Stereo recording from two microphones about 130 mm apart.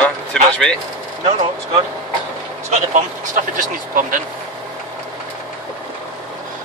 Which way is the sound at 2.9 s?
75° right (ahead or behind).